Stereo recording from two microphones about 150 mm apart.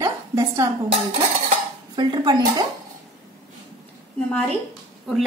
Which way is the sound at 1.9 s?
30° right (ahead or behind).